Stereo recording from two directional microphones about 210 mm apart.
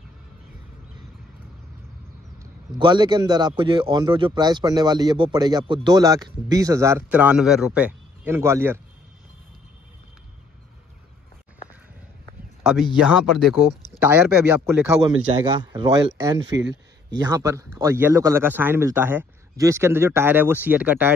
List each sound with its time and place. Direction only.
2.3 s a man's voice: 20° right (ahead or behind)
12.6 s a man's voice: 5° right (ahead or behind)